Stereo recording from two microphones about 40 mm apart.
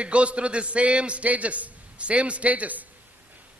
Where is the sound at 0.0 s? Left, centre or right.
Right.